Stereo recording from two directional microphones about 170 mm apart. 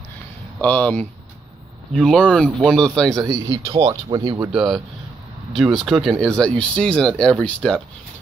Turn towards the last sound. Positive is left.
turn(degrees=5)  # may be behind; listen again after turning